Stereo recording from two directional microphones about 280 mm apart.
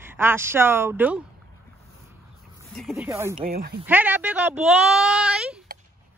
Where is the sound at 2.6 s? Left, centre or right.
Centre.